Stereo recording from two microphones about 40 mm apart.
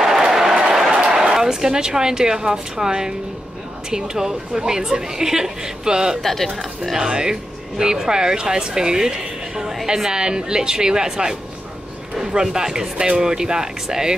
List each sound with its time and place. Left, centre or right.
0.0 s a sound: centre
1.1 s a woman's voice: centre
6.2 s speech: centre
7.1 s a woman's voice: centre
12.9 s speech: right
13.2 s a woman's voice: centre